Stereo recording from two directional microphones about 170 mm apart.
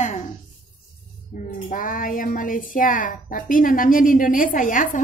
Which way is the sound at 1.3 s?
50° left (ahead or behind).